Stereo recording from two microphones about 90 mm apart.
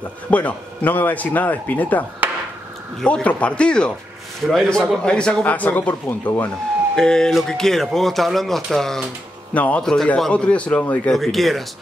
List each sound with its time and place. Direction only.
0.3 s a man's voice: 15° left (ahead or behind)
7.0 s speech: 10° left (ahead or behind)
9.5 s a man's voice: 15° left (ahead or behind)
11.1 s speech: centre (ahead or behind)